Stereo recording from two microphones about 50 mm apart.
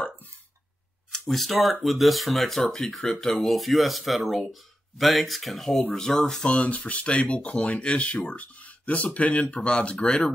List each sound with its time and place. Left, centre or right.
1.1 s speech: centre